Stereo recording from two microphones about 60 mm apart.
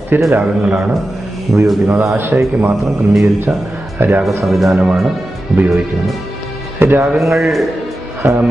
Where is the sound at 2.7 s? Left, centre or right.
Centre.